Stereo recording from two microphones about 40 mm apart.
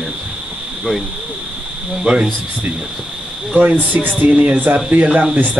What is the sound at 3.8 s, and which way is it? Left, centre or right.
Speech, right.